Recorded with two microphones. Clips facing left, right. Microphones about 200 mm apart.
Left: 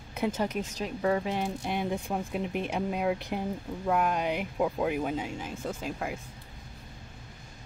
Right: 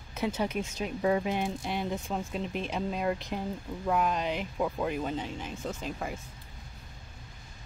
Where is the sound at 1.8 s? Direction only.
10° left (ahead or behind).